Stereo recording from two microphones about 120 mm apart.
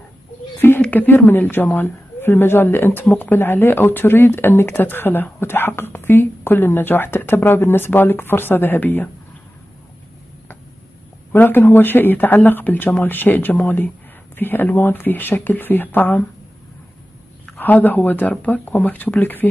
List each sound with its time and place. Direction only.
0.6 s a woman's voice: 15° left (ahead or behind)
11.3 s speech: 15° left (ahead or behind)
17.6 s speech: 15° left (ahead or behind)